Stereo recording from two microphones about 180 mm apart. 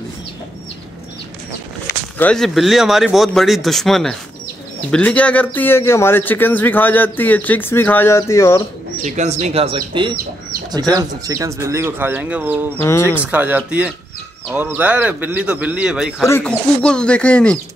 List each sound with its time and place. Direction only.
1.9 s speech: 10° left (ahead or behind)
9.0 s speech: 40° right (ahead or behind); by 12.7 s 10° right (ahead or behind)
12.7 s speech: 15° left (ahead or behind)
13.1 s speech: 10° right (ahead or behind)
16.3 s speech: 10° left (ahead or behind)